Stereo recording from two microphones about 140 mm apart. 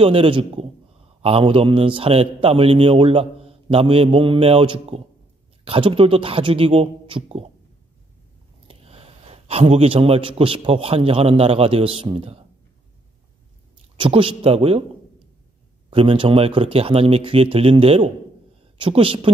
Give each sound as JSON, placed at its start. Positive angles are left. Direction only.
{"t": 0.0, "sound": "a man's voice", "side_deg": -40}
{"t": 8.6, "sound": "a man's voice", "side_deg": -45}
{"t": 13.9, "sound": "a man's voice", "side_deg": -40}
{"t": 15.9, "sound": "a man's voice", "side_deg": -40}